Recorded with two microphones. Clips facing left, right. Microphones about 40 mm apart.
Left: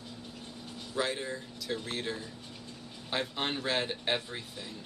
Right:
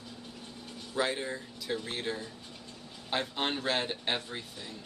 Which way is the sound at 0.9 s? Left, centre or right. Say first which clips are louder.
Right 1 dB; centre.